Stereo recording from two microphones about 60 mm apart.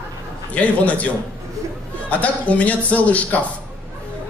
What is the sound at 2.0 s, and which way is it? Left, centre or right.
A man's voice, left.